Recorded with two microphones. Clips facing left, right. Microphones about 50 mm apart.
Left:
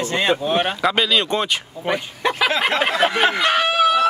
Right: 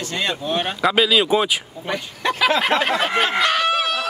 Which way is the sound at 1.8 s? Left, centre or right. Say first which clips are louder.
Left 3 dB; centre.